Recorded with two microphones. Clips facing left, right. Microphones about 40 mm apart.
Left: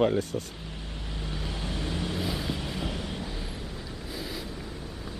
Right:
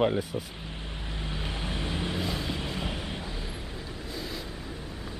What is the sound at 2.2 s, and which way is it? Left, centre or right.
Vehicle, centre.